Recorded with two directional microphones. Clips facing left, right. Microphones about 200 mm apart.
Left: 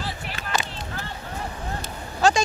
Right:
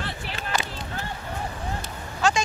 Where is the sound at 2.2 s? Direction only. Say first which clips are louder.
Left 4 dB; 35° left (ahead or behind).